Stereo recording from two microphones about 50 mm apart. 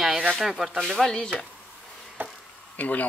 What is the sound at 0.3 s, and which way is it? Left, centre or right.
Speech, centre.